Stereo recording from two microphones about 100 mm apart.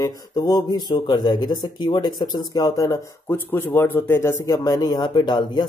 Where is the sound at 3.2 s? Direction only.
20° left (ahead or behind).